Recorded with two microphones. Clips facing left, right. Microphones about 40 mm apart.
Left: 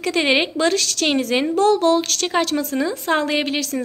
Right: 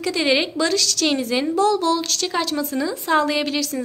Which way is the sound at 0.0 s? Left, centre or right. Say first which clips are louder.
Left 1 dB; left.